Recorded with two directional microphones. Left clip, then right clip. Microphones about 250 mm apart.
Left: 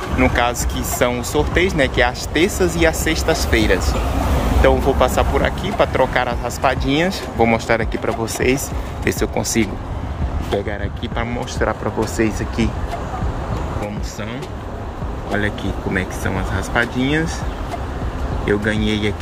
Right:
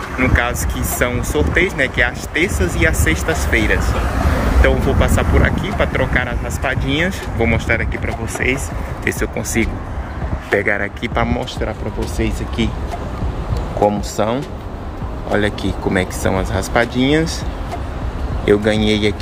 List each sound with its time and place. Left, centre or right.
0.2 s speech: centre
10.6 s speech: centre
15.3 s speech: centre
18.4 s speech: centre